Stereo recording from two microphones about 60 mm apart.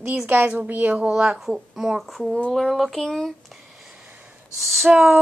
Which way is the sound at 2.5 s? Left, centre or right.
Centre.